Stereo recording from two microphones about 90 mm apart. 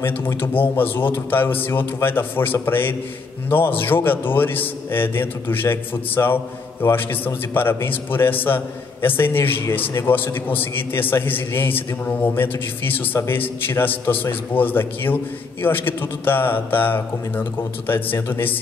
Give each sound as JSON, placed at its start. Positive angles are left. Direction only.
{"t": 0.0, "sound": "a man's voice", "side_deg": 25}